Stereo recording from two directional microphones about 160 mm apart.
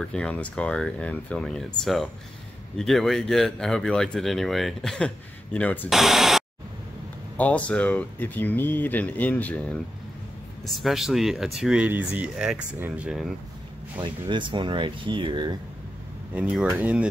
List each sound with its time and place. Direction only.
0.0 s speech: 5° left (ahead or behind)
5.9 s speech: centre (ahead or behind)
7.3 s speech: 10° left (ahead or behind)
10.8 s speech: centre (ahead or behind)
14.0 s speech: 30° right (ahead or behind)
16.3 s speech: 10° right (ahead or behind)